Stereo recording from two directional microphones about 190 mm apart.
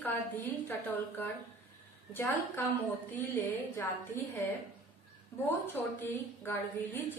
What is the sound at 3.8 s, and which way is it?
Speech, 15° left (ahead or behind).